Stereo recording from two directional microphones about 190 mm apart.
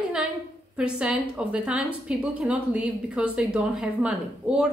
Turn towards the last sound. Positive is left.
turn(degrees=-5)  # may be behind; listen again after turning